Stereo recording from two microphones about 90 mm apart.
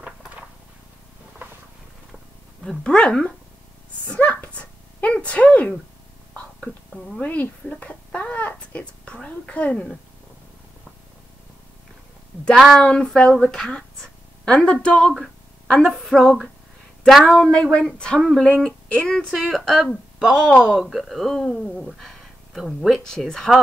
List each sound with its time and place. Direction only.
0.0 s a sound: 10° right (ahead or behind)
2.6 s speech: 5° left (ahead or behind)
4.1 s a sound: 15° left (ahead or behind)
6.3 s whispering: 5° left (ahead or behind)
7.2 s a child's voice: 20° left (ahead or behind)
12.5 s speech: centre (ahead or behind)
17.5 s speech: 10° left (ahead or behind)